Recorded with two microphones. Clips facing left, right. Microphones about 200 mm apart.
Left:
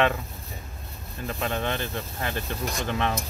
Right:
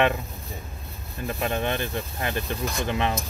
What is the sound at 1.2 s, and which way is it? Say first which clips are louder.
Speech: right 2 dB; 15° right (ahead or behind).